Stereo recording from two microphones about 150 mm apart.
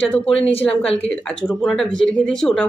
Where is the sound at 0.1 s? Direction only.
10° left (ahead or behind).